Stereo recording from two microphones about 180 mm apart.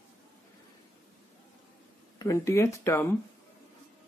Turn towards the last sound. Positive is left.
turn(degrees=15)  # may be behind; listen again after turning